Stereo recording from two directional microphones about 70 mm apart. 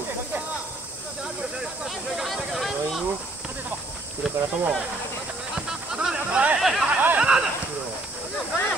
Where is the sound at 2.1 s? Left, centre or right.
Centre.